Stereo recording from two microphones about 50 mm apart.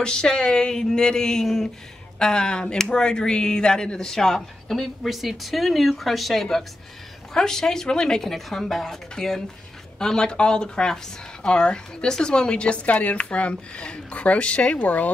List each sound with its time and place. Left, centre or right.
0.0 s a woman's voice: centre; by 15.0 s left